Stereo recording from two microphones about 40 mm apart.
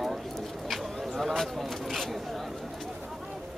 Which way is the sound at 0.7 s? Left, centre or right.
Centre.